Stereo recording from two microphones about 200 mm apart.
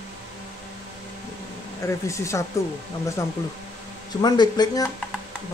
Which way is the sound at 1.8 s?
15° left (ahead or behind).